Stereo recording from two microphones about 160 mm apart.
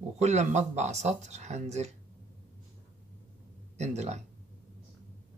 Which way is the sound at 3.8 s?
45° right (ahead or behind).